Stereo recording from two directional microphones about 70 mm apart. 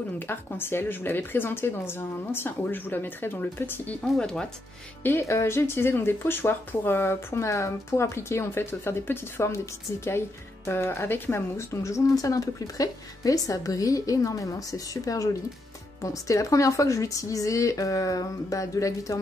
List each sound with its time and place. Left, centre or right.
0.2 s speech: left
4.2 s speech: centre
5.3 s speech: left